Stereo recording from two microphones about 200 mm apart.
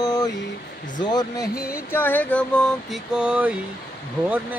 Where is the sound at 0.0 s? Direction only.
20° left (ahead or behind).